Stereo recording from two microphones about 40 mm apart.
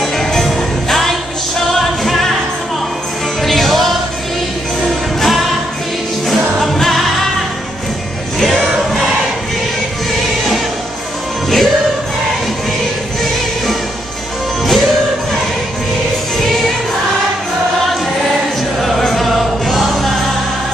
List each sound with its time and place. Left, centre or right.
0.2 s music: centre
3.4 s music: centre
8.4 s music: centre
11.4 s music: centre
14.6 s music: centre
18.8 s music: centre